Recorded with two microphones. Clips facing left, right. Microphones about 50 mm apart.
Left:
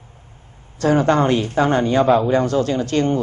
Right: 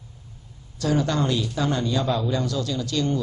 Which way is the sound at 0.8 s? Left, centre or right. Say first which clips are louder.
Left 8 dB; left.